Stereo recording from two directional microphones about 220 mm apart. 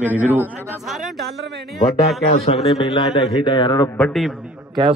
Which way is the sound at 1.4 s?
50° right (ahead or behind).